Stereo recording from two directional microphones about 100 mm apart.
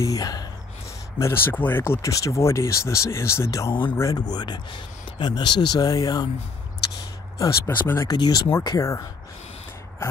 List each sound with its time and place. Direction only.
0.0 s speech: 35° left (ahead or behind)
1.2 s speech: 20° left (ahead or behind)
2.0 s speech: 35° left (ahead or behind)
4.1 s speech: 45° left (ahead or behind)
7.3 s speech: 30° left (ahead or behind)
8.1 s speech: 40° left (ahead or behind)